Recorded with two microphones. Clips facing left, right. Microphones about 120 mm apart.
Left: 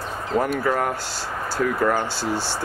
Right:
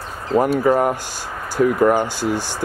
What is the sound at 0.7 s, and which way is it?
Speech, 20° right (ahead or behind).